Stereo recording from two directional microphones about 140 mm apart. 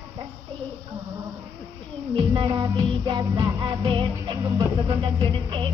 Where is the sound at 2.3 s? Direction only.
30° right (ahead or behind).